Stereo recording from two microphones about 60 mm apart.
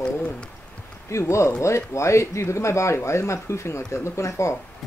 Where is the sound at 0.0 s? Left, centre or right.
Centre.